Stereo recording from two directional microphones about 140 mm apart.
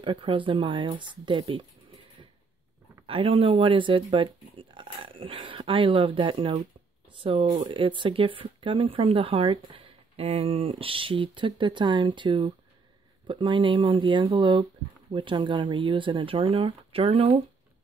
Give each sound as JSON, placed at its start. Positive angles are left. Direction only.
{"t": 0.0, "sound": "speech", "side_deg": -40}
{"t": 3.1, "sound": "speech", "side_deg": -40}